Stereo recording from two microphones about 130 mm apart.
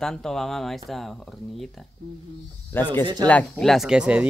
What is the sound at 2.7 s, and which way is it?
Speech, 15° left (ahead or behind).